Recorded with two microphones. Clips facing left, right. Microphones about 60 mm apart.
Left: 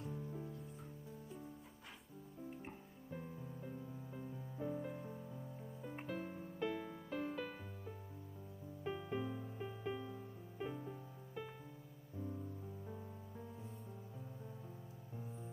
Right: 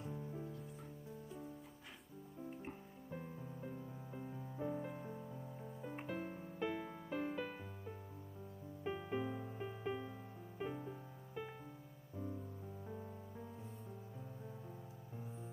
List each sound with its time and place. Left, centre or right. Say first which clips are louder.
3.6 s music: right 1 dB; centre
8.8 s music: right 1 dB; centre
12.8 s music: right 2 dB; centre